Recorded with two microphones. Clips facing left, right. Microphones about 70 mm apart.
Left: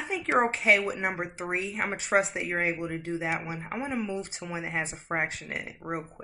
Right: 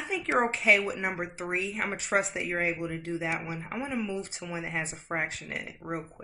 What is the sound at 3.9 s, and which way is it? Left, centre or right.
Speech, centre.